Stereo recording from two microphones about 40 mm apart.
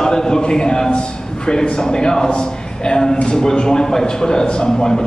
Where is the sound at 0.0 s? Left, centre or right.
Centre.